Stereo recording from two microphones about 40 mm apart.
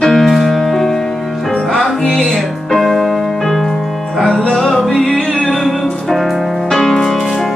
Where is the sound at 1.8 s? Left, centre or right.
Centre.